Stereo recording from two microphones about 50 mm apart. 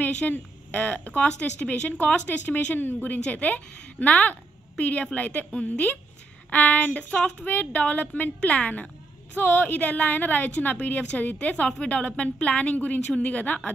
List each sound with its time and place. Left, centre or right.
0.0 s a woman's voice: left